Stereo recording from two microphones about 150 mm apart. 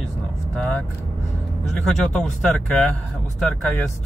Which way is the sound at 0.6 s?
10° left (ahead or behind).